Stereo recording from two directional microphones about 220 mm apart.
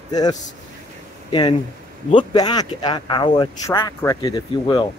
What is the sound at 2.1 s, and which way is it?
Speech, 20° left (ahead or behind).